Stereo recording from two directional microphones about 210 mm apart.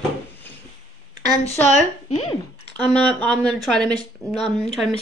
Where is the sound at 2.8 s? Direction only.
5° left (ahead or behind).